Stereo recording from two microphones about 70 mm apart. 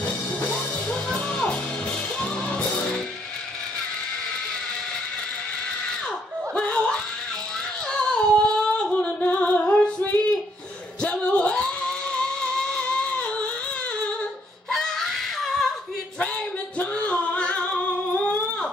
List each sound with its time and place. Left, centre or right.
6.5 s a sound: centre
8.1 s a sound: centre
9.0 s female singing: left
11.0 s music: centre
14.7 s screaming: centre
16.7 s music: centre